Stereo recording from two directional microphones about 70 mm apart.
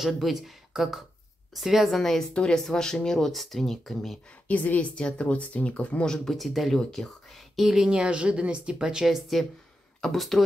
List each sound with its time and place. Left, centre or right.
0.0 s speech: centre
2.0 s speech: centre
4.5 s speech: left
6.1 s speech: centre